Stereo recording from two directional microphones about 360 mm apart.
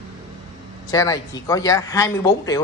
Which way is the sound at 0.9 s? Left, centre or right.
Centre.